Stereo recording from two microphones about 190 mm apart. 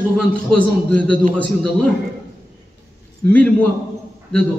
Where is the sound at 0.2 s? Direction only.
5° left (ahead or behind).